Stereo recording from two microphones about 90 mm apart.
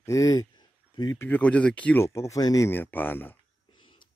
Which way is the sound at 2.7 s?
20° left (ahead or behind).